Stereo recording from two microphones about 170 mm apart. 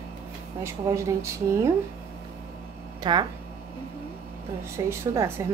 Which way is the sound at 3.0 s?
25° right (ahead or behind).